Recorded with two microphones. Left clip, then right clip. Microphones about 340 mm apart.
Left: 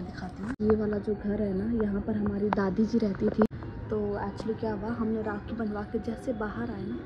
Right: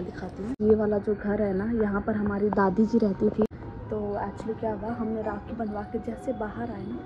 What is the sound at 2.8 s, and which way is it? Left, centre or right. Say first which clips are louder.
Speech: right 4 dB; centre.